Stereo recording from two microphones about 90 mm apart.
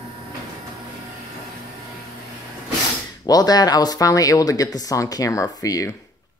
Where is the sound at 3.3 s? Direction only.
45° left (ahead or behind).